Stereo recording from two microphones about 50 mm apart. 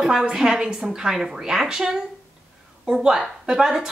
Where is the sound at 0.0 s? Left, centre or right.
Centre.